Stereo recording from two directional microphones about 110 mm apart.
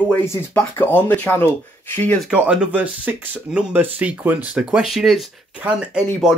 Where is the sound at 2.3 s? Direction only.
10° right (ahead or behind).